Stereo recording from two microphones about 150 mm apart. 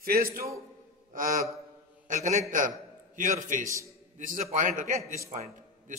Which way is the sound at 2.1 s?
50° right (ahead or behind).